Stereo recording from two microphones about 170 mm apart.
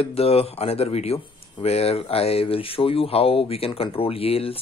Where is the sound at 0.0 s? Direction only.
35° left (ahead or behind).